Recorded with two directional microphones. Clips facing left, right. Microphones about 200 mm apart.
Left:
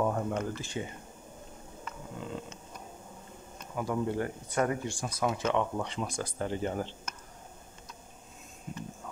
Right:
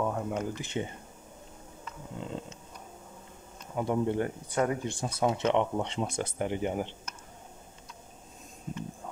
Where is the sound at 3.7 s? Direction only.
25° right (ahead or behind).